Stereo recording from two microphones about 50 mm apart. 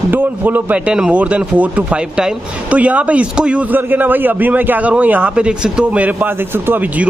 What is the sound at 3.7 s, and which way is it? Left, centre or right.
Speech, right.